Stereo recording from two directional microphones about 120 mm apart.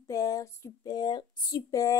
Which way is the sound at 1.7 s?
25° left (ahead or behind).